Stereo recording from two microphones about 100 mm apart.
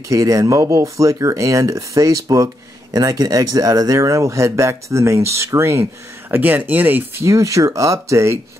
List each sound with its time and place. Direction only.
0.1 s speech: 35° right (ahead or behind); by 7.2 s 20° right (ahead or behind)
7.2 s speech: 30° right (ahead or behind)